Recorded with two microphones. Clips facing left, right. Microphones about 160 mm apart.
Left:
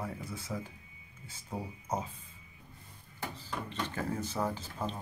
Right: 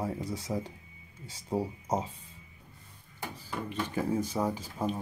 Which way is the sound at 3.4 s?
10° right (ahead or behind).